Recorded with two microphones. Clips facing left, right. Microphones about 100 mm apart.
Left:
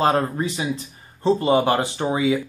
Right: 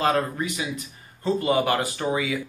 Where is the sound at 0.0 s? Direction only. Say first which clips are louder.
Left 3 dB; 30° left (ahead or behind).